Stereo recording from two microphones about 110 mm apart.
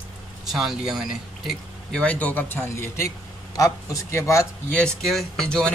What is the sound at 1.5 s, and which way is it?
A man's voice, 5° left (ahead or behind).